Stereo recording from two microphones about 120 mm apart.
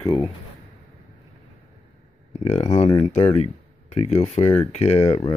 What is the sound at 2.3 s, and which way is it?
Speech, 65° left (ahead or behind).